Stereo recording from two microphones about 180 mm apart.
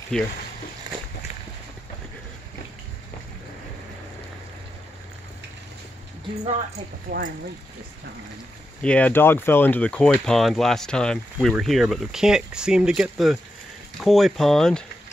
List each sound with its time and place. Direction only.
0.1 s speech: 5° left (ahead or behind)
7.1 s speech: 45° right (ahead or behind)
8.8 s speech: 5° left (ahead or behind)